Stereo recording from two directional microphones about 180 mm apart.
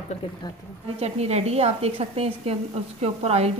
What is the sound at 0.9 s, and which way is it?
A woman's voice, 35° right (ahead or behind).